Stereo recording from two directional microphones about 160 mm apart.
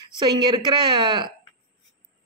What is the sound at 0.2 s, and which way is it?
Speech, 25° right (ahead or behind).